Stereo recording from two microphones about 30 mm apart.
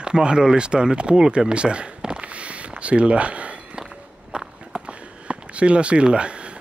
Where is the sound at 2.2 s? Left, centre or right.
Right.